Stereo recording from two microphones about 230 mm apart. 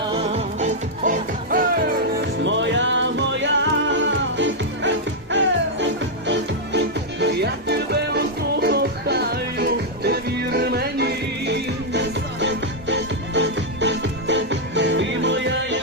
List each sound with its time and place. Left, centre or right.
0.1 s music: right
2.4 s music: right